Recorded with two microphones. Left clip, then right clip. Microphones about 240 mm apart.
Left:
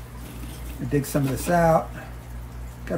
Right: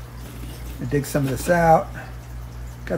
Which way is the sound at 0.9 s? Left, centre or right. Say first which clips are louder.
Right 2 dB; centre.